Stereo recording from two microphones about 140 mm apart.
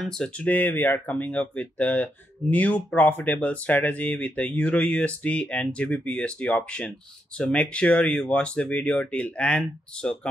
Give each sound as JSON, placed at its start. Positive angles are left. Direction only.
{"t": 0.0, "sound": "speech", "side_deg": 5}